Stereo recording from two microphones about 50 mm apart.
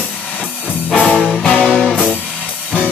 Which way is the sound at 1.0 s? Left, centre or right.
Centre.